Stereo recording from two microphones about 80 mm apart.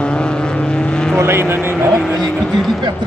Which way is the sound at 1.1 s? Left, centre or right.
Right.